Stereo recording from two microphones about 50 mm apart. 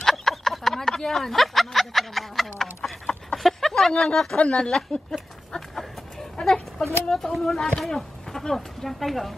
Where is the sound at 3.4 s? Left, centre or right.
Centre.